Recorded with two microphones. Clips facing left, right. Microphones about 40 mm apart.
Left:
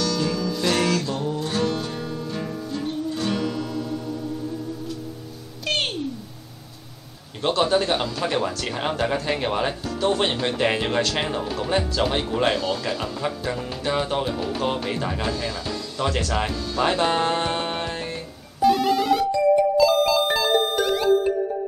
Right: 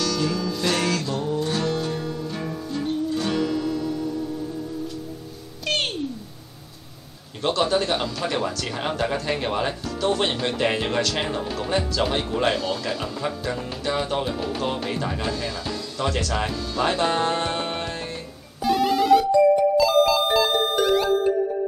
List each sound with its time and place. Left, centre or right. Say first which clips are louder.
0.0 s music: even; centre
5.7 s a sound: even; centre
7.4 s speech: left 1 dB; centre
11.2 s speech: left 1 dB; centre
18.6 s music: left 2 dB; centre